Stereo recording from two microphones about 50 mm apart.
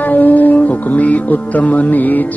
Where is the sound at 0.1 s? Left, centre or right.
Left.